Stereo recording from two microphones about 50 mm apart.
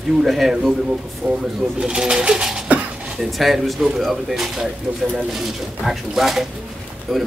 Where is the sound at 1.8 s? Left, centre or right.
Centre.